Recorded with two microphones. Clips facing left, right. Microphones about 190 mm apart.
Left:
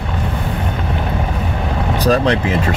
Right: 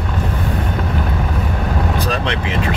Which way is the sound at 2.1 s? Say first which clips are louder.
Left 6 dB; 40° left (ahead or behind).